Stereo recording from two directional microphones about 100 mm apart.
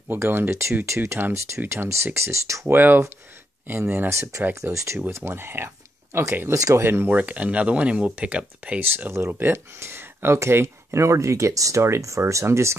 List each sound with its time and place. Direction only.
0.1 s speech: 20° right (ahead or behind)
8.9 s speech: 25° right (ahead or behind)